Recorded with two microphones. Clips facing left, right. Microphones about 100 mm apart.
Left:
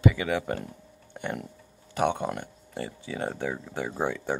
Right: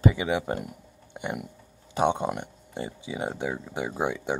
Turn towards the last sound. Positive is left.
turn(degrees=-15)  # may be behind; listen again after turning